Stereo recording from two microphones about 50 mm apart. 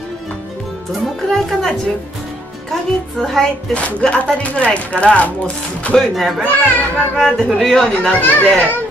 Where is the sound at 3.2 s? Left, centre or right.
Centre.